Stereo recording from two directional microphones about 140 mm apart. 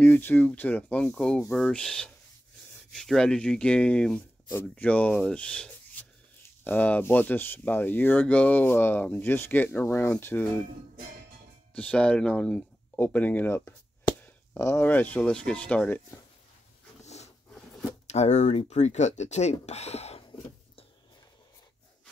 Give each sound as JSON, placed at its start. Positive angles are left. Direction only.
{"t": 0.0, "sound": "speech", "side_deg": 15}
{"t": 6.0, "sound": "dog", "side_deg": 10}
{"t": 6.6, "sound": "speech", "side_deg": 10}
{"t": 11.7, "sound": "speech", "side_deg": 10}
{"t": 17.0, "sound": "a sound", "side_deg": 50}
{"t": 18.0, "sound": "speech", "side_deg": 50}